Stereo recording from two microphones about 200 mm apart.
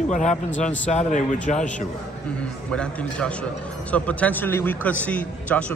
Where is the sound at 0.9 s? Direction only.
35° left (ahead or behind).